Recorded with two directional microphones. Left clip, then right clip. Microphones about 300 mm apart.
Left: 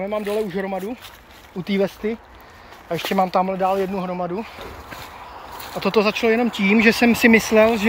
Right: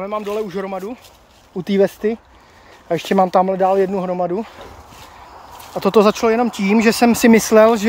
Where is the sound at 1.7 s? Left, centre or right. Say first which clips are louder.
Right 6 dB; right.